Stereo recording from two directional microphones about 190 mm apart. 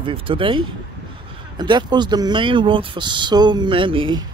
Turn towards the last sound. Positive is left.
turn(degrees=-25)  # may be behind; listen again after turning